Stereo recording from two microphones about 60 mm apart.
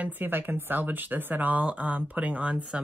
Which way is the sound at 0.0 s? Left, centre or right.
Right.